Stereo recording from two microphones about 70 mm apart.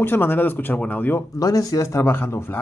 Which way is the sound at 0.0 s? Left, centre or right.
Left.